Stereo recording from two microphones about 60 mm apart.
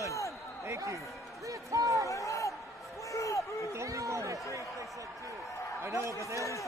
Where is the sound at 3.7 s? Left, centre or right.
Right.